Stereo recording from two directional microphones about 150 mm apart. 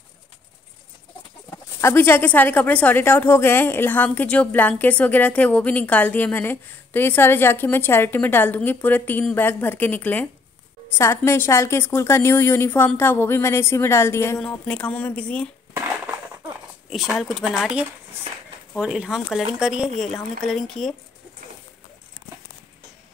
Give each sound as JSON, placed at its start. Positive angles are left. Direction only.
{"t": 1.8, "sound": "a woman's voice", "side_deg": 15}
{"t": 16.9, "sound": "speech", "side_deg": 0}